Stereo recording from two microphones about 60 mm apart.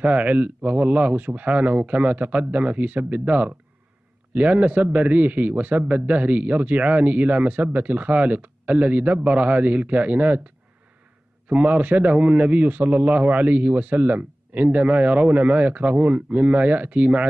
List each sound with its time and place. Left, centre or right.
0.0 s a man's voice: right